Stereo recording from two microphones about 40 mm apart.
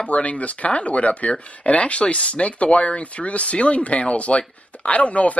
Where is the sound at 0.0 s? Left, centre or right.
Left.